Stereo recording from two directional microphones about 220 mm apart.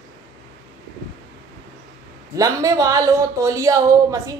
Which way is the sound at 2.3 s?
15° right (ahead or behind).